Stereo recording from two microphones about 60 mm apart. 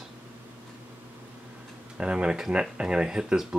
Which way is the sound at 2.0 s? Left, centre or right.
Centre.